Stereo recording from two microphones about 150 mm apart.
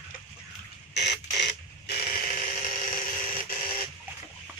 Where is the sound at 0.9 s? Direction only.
90° left; by 3.7 s 70° left (ahead or behind).